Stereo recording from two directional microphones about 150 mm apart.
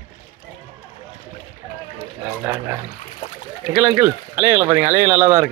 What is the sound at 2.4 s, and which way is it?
Speech, 15° right (ahead or behind).